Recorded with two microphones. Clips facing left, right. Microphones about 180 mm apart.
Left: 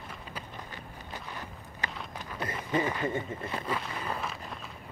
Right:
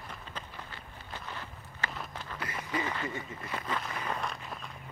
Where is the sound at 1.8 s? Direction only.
15° left (ahead or behind).